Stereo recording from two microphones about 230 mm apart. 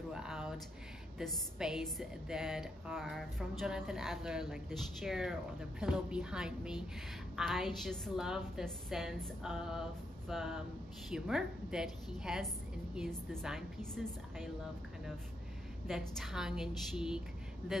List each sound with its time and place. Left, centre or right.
0.1 s a sound: centre
1.1 s a woman's voice: centre
15.9 s a woman's voice: centre